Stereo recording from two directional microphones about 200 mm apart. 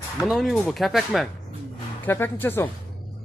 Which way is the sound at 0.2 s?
Centre (ahead or behind).